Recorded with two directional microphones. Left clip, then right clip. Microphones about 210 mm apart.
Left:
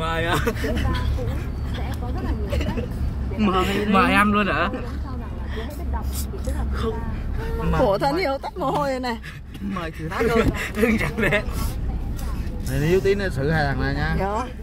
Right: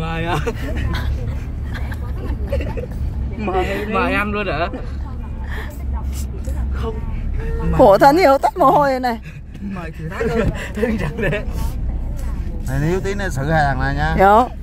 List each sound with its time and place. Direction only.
0.0 s vehicle: 10° left (ahead or behind)
3.4 s speech: 10° left (ahead or behind)
7.8 s speech: 35° right (ahead or behind)
9.8 s speech: 15° left (ahead or behind)
12.6 s speech: 40° right (ahead or behind)
14.1 s speech: 40° right (ahead or behind)